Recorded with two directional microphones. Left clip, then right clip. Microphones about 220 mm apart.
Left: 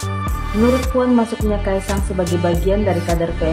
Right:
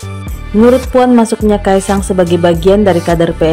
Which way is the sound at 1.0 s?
40° right (ahead or behind).